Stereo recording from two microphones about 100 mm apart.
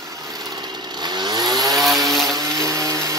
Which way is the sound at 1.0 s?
45° right (ahead or behind).